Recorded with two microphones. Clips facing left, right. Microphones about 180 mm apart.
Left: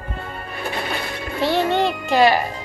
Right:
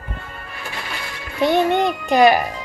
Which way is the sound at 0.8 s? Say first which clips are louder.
Left 5 dB; 55° left (ahead or behind).